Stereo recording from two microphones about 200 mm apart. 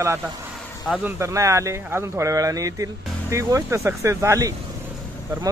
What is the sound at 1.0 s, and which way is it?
Speech, 15° right (ahead or behind).